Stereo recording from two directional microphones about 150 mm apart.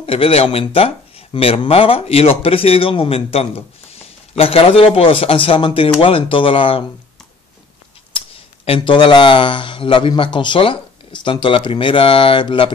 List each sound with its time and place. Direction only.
0.0 s speech: 40° left (ahead or behind)
8.6 s speech: 35° left (ahead or behind)